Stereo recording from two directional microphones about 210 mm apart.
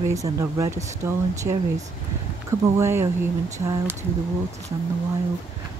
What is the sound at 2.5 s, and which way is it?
Speech, 15° right (ahead or behind).